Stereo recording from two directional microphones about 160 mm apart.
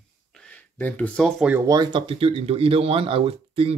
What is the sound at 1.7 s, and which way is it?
Speech, 30° right (ahead or behind).